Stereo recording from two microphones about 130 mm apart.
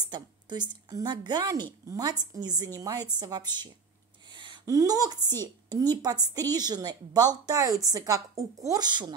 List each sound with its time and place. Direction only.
0.1 s a woman's voice: 35° right (ahead or behind)